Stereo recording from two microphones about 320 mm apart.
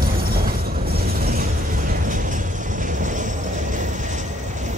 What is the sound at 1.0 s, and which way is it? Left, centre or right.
Mechanisms, right.